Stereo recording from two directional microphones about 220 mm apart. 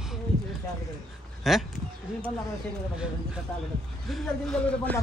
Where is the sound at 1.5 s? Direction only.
Centre (ahead or behind).